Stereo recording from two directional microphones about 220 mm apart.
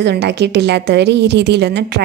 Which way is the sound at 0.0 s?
50° right (ahead or behind).